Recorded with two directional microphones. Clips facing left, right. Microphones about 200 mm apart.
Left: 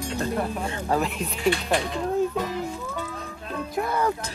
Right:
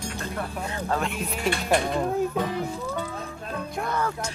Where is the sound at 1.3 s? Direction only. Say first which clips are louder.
Left 1 dB; 50° right (ahead or behind).